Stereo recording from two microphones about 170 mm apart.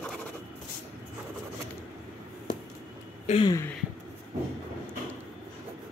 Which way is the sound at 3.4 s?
15° left (ahead or behind).